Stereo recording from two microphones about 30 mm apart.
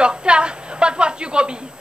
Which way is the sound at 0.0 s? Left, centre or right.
Right.